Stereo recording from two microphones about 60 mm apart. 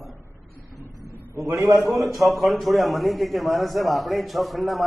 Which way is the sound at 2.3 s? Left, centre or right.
Centre.